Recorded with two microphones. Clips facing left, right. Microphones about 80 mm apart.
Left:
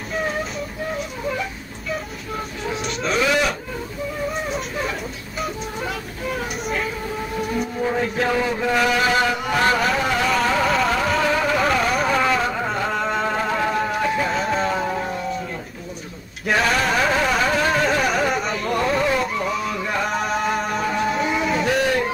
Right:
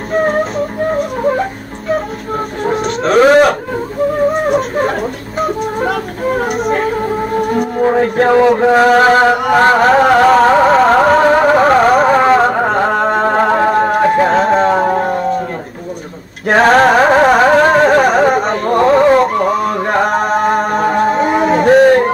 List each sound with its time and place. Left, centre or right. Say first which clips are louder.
0.1 s music: right 12 dB; right
2.6 s a sound: right 11 dB; right
4.1 s music: right 13 dB; right
16.4 s music: right 11 dB; right